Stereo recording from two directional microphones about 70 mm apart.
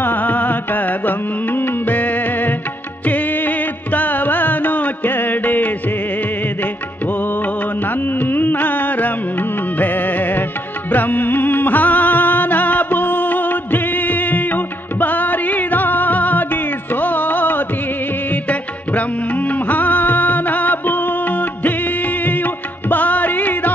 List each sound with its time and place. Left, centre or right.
0.0 s music: left
7.8 s music: left